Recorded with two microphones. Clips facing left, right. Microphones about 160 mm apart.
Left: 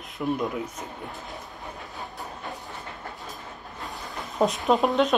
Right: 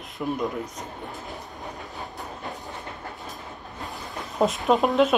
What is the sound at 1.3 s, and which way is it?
Train, 20° right (ahead or behind).